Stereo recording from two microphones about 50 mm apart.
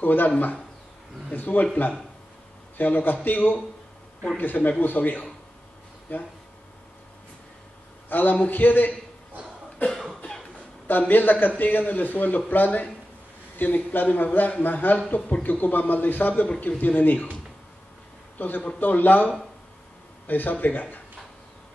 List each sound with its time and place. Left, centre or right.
0.0 s a man's voice: left
1.3 s a man's voice: left
2.8 s a man's voice: left
8.1 s a man's voice: left
10.0 s cough: centre
10.9 s a man's voice: left
18.4 s a man's voice: left